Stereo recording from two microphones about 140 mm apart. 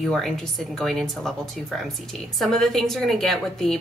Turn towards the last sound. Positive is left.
turn(degrees=0)  # may be behind; listen again after turning